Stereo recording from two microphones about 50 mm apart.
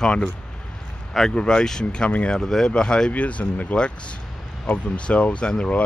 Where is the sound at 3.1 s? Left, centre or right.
Left.